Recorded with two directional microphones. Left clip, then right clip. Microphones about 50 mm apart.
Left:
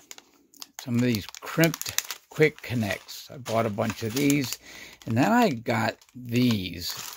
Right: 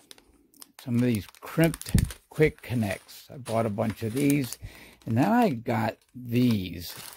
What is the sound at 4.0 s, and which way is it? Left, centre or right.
Speech, right.